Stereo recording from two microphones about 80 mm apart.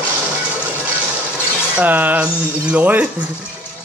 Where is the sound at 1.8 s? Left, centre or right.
Right.